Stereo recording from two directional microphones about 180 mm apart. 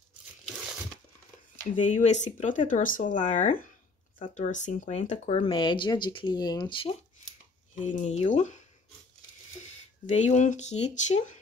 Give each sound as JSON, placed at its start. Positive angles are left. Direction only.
{"t": 1.8, "sound": "speech", "side_deg": 40}
{"t": 5.4, "sound": "speech", "side_deg": 25}
{"t": 7.7, "sound": "speech", "side_deg": 45}
{"t": 10.0, "sound": "speech", "side_deg": 40}